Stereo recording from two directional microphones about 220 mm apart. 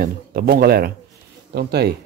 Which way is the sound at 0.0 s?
45° right (ahead or behind).